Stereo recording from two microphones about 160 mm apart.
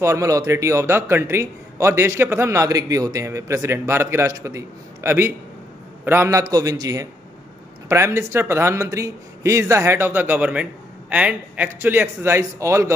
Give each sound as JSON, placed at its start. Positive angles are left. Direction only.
{"t": 0.0, "sound": "a man's voice", "side_deg": -20}